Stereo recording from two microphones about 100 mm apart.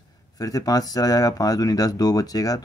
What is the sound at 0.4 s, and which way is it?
Speech, 35° left (ahead or behind).